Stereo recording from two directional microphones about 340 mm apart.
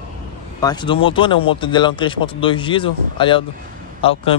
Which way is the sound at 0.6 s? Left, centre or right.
Centre.